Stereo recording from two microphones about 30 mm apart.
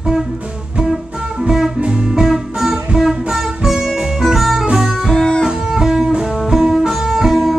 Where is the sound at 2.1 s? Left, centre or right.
Centre.